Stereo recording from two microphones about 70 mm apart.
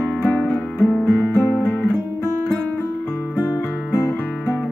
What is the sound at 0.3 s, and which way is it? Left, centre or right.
Music, centre.